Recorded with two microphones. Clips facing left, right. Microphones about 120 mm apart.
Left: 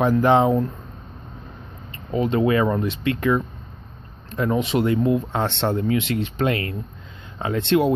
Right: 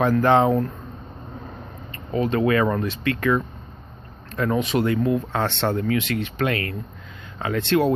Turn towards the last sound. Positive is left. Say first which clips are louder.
# left 1 dB
turn(degrees=20)  # may be behind; listen again after turning